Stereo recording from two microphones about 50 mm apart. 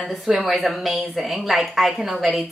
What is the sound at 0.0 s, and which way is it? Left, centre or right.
A woman's voice, centre.